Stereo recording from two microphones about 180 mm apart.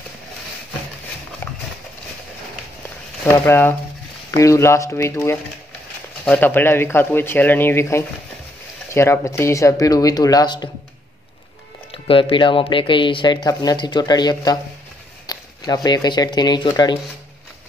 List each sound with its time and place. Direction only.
1.4 s horse: 15° left (ahead or behind)
3.3 s speech: 15° left (ahead or behind)
11.9 s speech: 30° left (ahead or behind)